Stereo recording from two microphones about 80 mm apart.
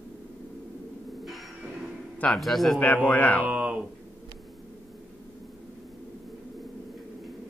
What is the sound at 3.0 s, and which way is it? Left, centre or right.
Speech, centre.